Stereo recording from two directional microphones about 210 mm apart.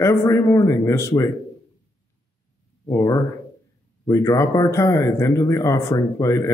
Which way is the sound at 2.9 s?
15° left (ahead or behind).